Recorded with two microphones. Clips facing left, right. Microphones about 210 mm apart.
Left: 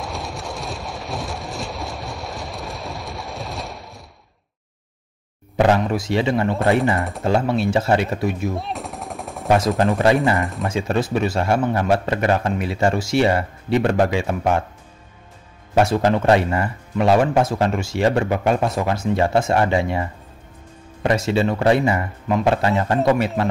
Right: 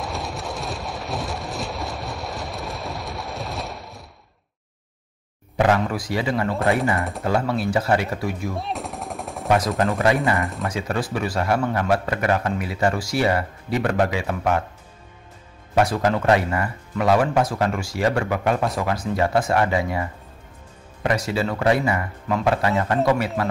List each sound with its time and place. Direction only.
0.0 s rain: centre (ahead or behind)
5.8 s speech: 25° left (ahead or behind)
7.0 s speech: centre (ahead or behind)
7.2 s speech: 25° left (ahead or behind)
8.5 s machine gun: centre (ahead or behind)
10.6 s speech: 25° left (ahead or behind)
15.7 s speech: 25° left (ahead or behind)